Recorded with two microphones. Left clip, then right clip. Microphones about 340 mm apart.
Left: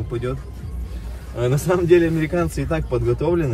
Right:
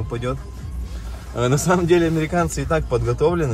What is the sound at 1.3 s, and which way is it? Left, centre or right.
A man's voice, right.